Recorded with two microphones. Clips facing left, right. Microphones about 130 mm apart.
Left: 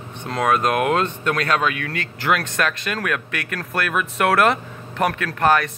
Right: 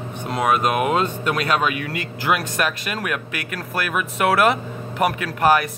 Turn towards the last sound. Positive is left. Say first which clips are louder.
# right 1 dB
turn(degrees=-10)  # may be behind; listen again after turning